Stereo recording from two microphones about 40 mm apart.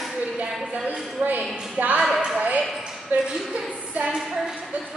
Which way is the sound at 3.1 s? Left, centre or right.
Right.